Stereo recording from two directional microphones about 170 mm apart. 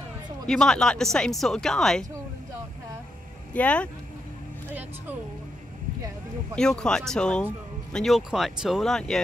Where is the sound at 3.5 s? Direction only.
10° left (ahead or behind).